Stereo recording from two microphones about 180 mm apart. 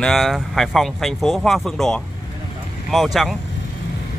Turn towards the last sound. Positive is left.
turn(degrees=0)  # may be behind; listen again after turning